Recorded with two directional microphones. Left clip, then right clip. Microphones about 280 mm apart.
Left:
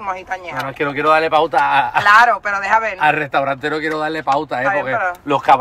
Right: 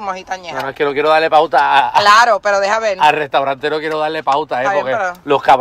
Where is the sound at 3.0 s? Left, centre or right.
Right.